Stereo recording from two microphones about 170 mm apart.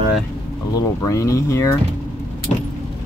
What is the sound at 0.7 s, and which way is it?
Speech, 20° left (ahead or behind).